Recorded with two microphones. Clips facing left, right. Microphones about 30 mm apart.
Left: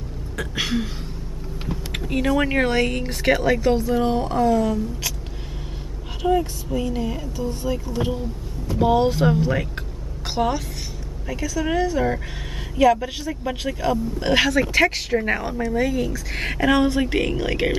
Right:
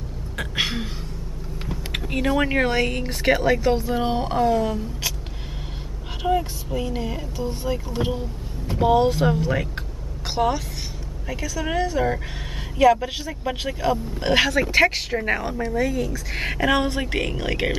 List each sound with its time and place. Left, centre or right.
0.4 s speech: centre
1.9 s speech: centre
6.2 s speech: centre
8.7 s a woman's voice: centre